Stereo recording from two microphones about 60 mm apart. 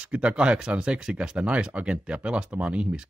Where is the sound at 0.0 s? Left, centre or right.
Centre.